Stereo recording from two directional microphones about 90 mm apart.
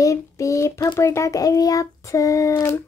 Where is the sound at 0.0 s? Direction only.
35° left (ahead or behind).